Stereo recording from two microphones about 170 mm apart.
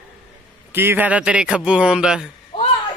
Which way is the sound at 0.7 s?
10° right (ahead or behind).